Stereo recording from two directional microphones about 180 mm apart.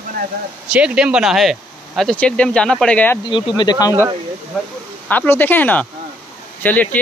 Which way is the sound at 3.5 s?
20° left (ahead or behind).